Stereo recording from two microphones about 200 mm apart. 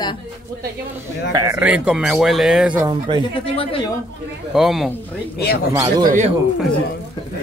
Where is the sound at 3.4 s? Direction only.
25° left (ahead or behind).